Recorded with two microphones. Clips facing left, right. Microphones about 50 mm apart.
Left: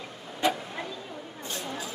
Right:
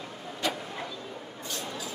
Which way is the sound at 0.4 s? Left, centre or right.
Centre.